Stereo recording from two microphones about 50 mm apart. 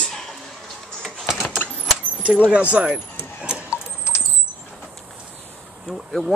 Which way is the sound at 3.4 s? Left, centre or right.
Right.